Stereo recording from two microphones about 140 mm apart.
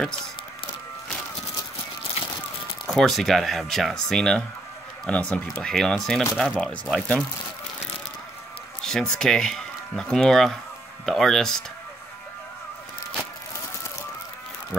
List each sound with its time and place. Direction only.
2.2 s music: 45° left (ahead or behind)
2.9 s speech: centre (ahead or behind)
8.8 s speech: 5° left (ahead or behind)